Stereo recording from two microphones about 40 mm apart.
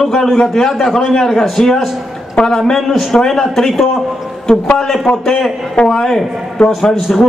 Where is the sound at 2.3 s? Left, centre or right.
Centre.